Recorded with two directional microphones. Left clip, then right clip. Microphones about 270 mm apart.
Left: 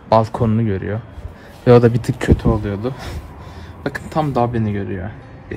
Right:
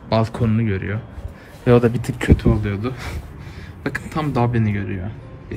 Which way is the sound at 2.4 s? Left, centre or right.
Centre.